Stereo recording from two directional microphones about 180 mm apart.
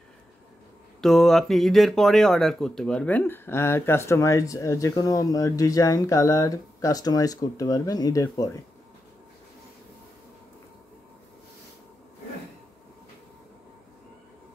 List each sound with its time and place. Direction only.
1.0 s speech: centre (ahead or behind); by 8.5 s 20° left (ahead or behind)